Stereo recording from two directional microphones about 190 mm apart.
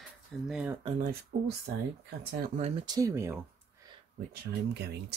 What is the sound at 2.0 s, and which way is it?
Speech, 40° right (ahead or behind).